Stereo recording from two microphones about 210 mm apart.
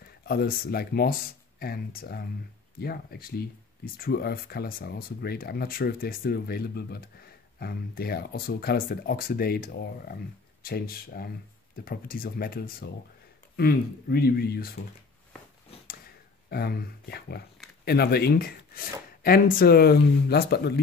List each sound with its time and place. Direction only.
0.2 s speech: 50° left (ahead or behind)
16.4 s speech: 45° left (ahead or behind)